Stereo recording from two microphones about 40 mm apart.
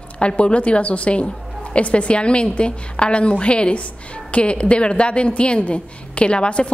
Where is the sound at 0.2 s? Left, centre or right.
Left.